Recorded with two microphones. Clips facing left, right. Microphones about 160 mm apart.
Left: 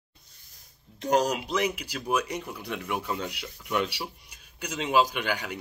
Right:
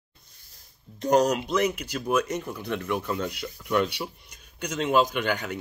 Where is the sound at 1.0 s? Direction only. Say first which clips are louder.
Right 3 dB; 5° left (ahead or behind).